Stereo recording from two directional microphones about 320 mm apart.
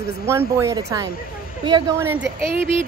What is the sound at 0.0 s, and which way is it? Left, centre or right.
Speech, centre.